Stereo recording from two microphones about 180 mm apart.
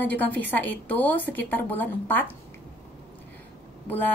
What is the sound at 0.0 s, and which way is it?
Speech, 10° left (ahead or behind).